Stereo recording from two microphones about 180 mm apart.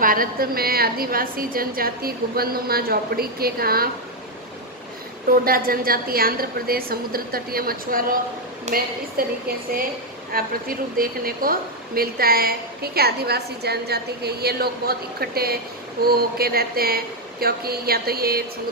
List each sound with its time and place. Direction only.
0.0 s a woman's voice: 50° right (ahead or behind)
5.3 s a woman's voice: 55° right (ahead or behind)
10.3 s a woman's voice: 55° right (ahead or behind)